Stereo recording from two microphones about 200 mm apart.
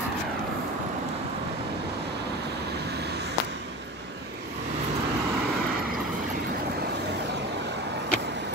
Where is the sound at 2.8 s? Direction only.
55° right (ahead or behind).